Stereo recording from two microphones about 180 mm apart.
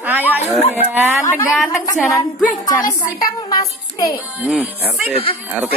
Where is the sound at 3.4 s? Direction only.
20° left (ahead or behind).